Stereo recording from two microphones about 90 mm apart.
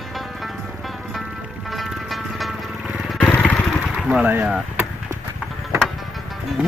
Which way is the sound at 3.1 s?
10° left (ahead or behind).